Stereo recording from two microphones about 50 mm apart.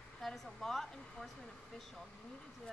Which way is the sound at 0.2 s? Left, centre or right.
Centre.